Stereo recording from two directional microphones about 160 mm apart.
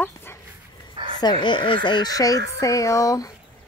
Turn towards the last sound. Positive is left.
turn(degrees=20)  # may be behind; listen again after turning